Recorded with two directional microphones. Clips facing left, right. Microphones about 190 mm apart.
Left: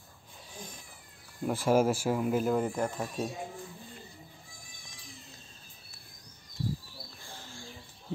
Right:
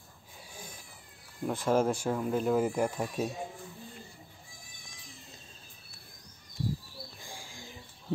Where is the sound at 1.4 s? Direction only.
5° left (ahead or behind).